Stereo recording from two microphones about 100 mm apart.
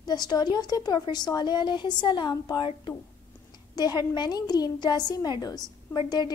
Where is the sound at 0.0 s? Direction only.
45° left (ahead or behind).